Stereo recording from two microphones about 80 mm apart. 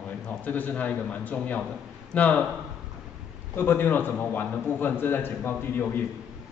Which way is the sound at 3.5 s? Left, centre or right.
Left.